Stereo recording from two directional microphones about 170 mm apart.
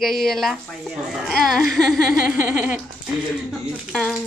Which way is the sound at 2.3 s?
15° right (ahead or behind).